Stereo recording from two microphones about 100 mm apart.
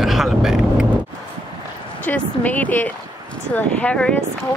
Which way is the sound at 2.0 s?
15° left (ahead or behind).